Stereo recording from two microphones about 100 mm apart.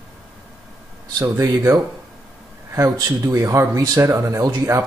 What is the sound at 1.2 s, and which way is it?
Speech, 35° right (ahead or behind).